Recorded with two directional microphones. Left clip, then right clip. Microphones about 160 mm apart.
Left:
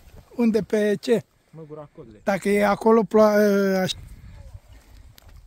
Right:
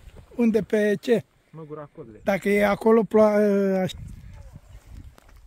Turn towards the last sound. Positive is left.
turn(degrees=0)  # may be behind; listen again after turning